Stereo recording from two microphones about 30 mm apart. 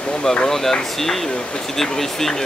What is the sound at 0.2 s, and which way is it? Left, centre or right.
Speech, centre.